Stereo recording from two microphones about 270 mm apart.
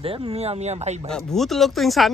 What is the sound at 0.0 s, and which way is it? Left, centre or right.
Speech, right.